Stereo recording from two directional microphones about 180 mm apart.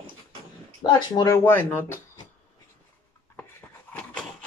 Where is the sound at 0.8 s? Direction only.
25° left (ahead or behind).